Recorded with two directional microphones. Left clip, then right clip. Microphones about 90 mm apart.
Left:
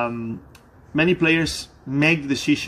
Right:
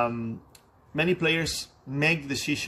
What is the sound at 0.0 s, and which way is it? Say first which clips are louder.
A man's voice: left 2 dB; 25° right (ahead or behind).